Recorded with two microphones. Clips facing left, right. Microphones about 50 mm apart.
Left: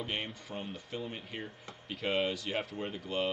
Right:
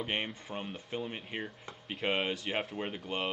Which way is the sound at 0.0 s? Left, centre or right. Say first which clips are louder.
Right 2 dB; right.